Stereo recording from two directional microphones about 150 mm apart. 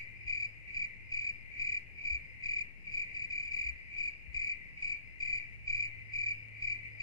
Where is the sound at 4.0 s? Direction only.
25° left (ahead or behind).